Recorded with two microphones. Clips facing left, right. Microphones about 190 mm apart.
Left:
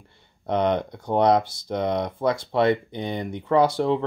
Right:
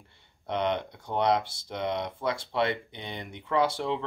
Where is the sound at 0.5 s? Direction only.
45° left (ahead or behind).